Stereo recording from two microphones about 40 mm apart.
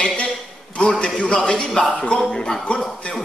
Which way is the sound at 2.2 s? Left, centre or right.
Centre.